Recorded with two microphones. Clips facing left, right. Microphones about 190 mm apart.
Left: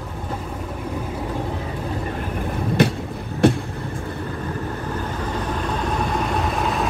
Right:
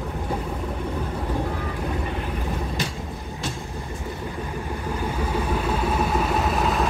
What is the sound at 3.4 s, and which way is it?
Vehicle, 60° left (ahead or behind).